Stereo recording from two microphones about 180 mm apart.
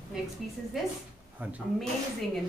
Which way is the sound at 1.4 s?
10° right (ahead or behind).